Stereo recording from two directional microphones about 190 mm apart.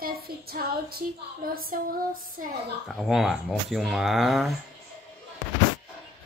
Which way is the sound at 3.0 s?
Centre (ahead or behind).